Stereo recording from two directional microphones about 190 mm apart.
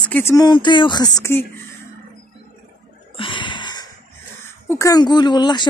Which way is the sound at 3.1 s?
25° left (ahead or behind).